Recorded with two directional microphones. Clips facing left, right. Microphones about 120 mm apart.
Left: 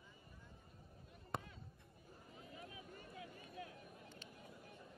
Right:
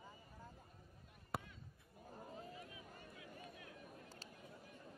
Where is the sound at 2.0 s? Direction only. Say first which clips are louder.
Right 7 dB; 45° right (ahead or behind).